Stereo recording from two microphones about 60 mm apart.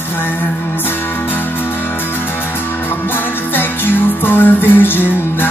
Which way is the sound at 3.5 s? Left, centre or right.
Left.